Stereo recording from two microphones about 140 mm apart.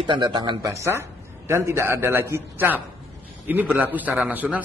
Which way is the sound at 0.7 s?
20° right (ahead or behind).